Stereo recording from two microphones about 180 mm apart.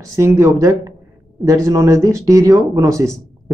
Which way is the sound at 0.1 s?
15° right (ahead or behind).